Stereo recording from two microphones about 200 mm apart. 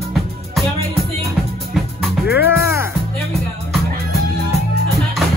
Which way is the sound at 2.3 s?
10° right (ahead or behind).